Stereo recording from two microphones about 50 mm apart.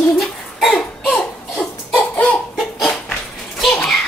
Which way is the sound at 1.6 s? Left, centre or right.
Left.